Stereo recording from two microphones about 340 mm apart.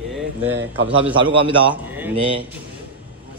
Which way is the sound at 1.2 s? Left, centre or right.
Centre.